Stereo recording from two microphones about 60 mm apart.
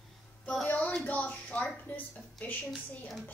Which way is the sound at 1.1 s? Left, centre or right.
Left.